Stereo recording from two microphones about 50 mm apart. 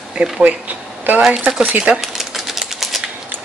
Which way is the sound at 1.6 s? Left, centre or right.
Right.